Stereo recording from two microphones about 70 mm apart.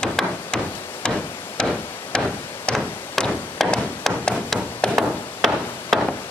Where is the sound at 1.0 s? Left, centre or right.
Centre.